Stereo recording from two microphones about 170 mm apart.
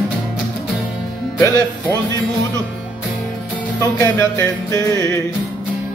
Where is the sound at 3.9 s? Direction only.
20° left (ahead or behind).